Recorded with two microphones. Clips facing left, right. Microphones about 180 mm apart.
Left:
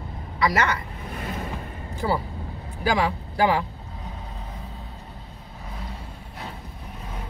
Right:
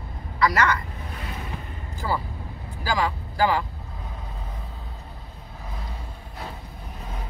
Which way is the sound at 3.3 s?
20° left (ahead or behind).